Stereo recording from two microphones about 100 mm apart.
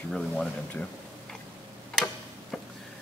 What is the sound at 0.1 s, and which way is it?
Speech, 5° left (ahead or behind).